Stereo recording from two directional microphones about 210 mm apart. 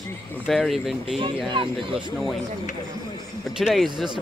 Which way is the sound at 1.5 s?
25° right (ahead or behind).